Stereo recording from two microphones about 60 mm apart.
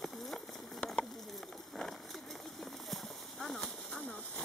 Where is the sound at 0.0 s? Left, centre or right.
Centre.